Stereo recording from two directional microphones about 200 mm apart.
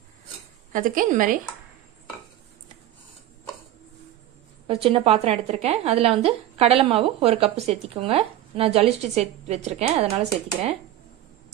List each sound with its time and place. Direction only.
0.7 s a woman's voice: 45° right (ahead or behind)
4.6 s a woman's voice: 30° right (ahead or behind)